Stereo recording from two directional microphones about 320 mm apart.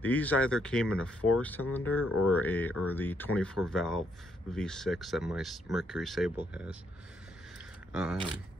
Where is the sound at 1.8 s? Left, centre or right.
Left.